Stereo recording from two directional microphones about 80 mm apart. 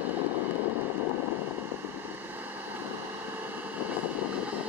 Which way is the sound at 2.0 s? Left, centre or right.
Right.